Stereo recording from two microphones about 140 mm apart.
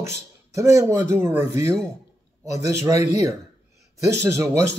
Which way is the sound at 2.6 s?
20° right (ahead or behind).